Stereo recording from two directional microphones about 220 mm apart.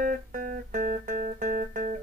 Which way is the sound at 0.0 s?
40° right (ahead or behind).